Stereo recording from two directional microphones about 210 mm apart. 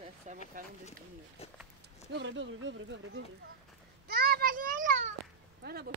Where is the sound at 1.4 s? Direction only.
30° left (ahead or behind).